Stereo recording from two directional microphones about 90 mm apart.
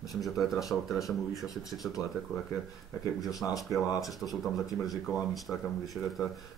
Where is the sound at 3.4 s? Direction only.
45° left (ahead or behind).